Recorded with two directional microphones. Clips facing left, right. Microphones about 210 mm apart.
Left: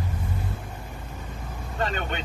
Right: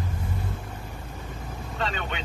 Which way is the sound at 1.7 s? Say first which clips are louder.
Left 3 dB; 50° left (ahead or behind).